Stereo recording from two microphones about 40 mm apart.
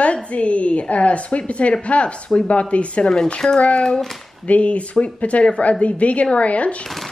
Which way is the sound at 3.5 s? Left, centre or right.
Left.